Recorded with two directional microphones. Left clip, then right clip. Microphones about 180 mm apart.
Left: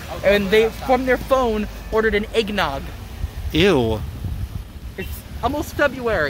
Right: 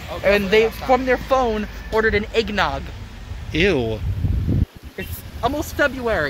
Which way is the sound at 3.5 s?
20° left (ahead or behind).